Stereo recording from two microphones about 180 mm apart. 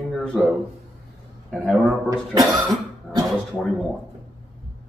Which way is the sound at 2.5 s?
20° right (ahead or behind).